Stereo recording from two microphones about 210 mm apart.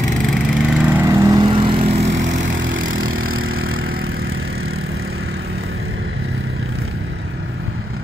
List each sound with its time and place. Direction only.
0.3 s vehicle: centre (ahead or behind)
1.0 s lawn mower: 15° right (ahead or behind); by 2.2 s 30° right (ahead or behind)
2.5 s vehicle: 65° right (ahead or behind)